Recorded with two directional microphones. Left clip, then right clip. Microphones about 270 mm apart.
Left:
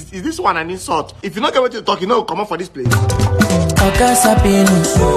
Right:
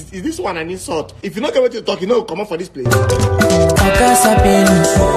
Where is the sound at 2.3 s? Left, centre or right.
Left.